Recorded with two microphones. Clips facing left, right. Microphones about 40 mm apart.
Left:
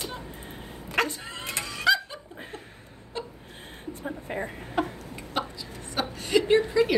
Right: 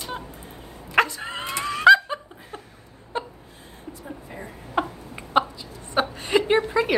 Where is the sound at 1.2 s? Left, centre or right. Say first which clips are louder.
Right 5 dB; right.